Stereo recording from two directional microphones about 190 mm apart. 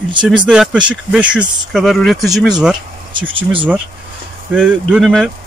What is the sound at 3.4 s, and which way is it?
Speech, 25° right (ahead or behind).